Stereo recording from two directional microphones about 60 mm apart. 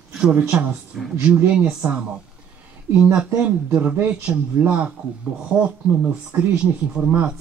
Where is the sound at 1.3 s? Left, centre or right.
Right.